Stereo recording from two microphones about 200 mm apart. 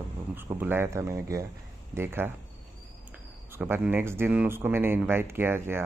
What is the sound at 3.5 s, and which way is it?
Speech, 10° right (ahead or behind).